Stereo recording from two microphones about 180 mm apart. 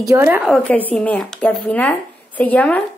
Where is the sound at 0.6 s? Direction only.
10° left (ahead or behind).